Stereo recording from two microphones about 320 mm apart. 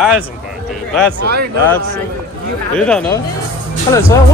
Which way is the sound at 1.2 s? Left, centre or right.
Right.